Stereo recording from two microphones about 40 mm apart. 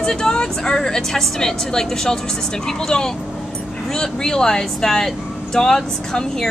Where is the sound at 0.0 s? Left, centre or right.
Centre.